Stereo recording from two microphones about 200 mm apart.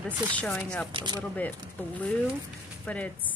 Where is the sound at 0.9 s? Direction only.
20° right (ahead or behind).